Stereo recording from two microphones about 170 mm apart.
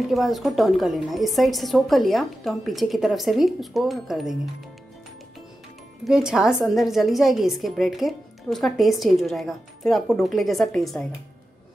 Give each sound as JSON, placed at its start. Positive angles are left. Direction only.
{"t": 0.1, "sound": "a woman's voice", "side_deg": 0}
{"t": 6.0, "sound": "a woman's voice", "side_deg": -5}